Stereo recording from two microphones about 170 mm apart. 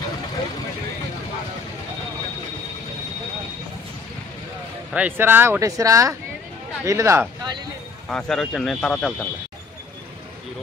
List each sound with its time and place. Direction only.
4.9 s speech: 10° right (ahead or behind)
8.1 s a man's voice: 5° left (ahead or behind)